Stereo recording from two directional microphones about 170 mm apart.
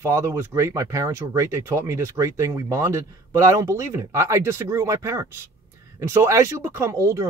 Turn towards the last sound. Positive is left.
turn(degrees=-20)  # may be behind; listen again after turning